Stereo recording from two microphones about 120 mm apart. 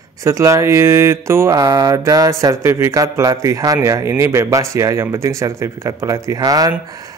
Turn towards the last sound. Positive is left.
turn(degrees=-30)  # may be behind; listen again after turning